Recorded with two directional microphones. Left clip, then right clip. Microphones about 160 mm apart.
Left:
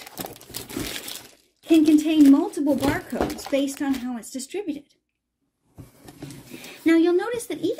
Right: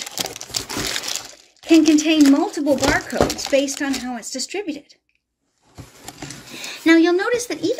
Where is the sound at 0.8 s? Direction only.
20° left (ahead or behind).